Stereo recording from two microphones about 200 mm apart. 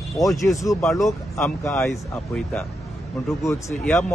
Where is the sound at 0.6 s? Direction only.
15° left (ahead or behind).